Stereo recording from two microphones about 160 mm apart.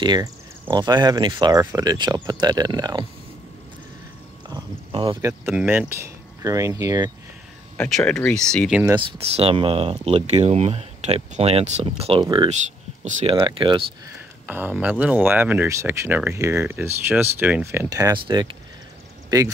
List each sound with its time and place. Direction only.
0.0 s speech: 25° right (ahead or behind)
5.0 s speech: 25° right (ahead or behind)
5.5 s speech: 10° right (ahead or behind)
8.1 s speech: 5° left (ahead or behind)
9.0 s speech: 35° right (ahead or behind)
14.4 s speech: 10° right (ahead or behind)